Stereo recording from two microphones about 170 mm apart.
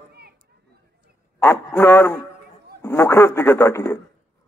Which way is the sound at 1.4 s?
10° left (ahead or behind).